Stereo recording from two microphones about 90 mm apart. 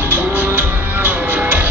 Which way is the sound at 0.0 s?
20° right (ahead or behind).